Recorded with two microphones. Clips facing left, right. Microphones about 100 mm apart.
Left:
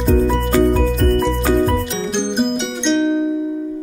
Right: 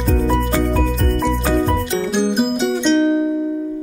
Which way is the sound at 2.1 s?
5° right (ahead or behind).